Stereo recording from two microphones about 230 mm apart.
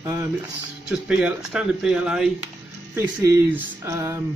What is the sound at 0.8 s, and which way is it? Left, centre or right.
Speech, centre.